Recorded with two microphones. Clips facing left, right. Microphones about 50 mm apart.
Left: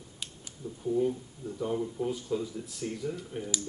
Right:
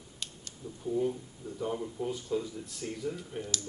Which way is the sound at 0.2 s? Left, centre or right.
Centre.